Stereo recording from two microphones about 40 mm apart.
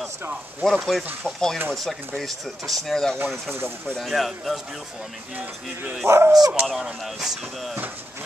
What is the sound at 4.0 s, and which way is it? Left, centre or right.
Speech, centre.